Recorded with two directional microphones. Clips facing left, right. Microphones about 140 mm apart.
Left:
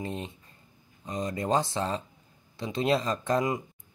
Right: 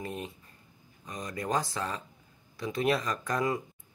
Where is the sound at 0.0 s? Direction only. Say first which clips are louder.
Left 2 dB; 25° left (ahead or behind).